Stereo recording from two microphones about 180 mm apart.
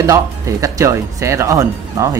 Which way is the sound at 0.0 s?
20° right (ahead or behind).